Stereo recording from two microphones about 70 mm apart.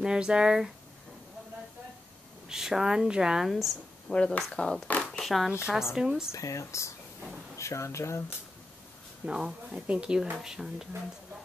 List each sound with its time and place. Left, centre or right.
0.0 s speech: centre
2.4 s speech: centre
4.1 s speech: centre
5.6 s speech: centre
6.3 s speech: left
9.2 s speech: centre